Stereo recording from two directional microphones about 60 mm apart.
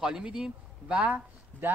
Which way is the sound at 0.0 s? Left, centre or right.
Centre.